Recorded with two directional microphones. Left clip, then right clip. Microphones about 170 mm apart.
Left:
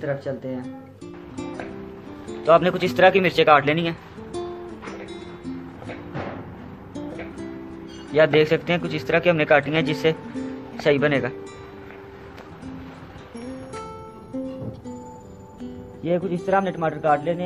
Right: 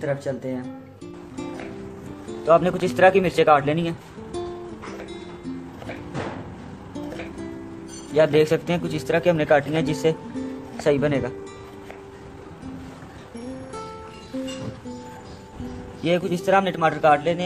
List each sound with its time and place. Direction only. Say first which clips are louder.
0.0 s speech: right 1 dB; 5° right (ahead or behind)
1.3 s music: left 1 dB; centre (ahead or behind)
2.2 s speech: left 1 dB; 5° right (ahead or behind)
5.1 s music: even; centre (ahead or behind)
6.9 s music: even; centre (ahead or behind)
8.1 s a man's voice: left 1 dB; 15° right (ahead or behind)
16.0 s a man's voice: right 1 dB; 15° right (ahead or behind)